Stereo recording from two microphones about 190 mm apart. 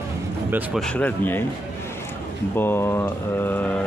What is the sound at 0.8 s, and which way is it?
Speech, 5° left (ahead or behind).